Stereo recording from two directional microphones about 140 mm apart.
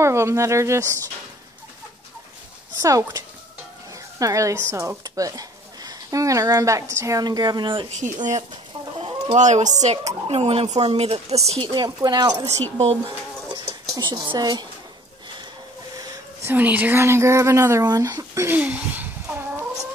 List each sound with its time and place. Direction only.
0.0 s speech: 20° right (ahead or behind)
2.8 s speech: 25° right (ahead or behind)
8.0 s speech: 60° right (ahead or behind)
9.4 s speech: 60° right (ahead or behind)
10.2 s speech: 45° right (ahead or behind)
11.6 s speech: 30° right (ahead or behind)
12.7 s speech: 45° right (ahead or behind)
13.7 s speech: 25° right (ahead or behind)
16.0 s a sound: 25° right (ahead or behind)
16.5 s speech: 10° right (ahead or behind)